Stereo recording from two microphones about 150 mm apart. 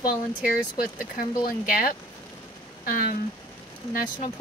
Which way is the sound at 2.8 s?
75° left (ahead or behind).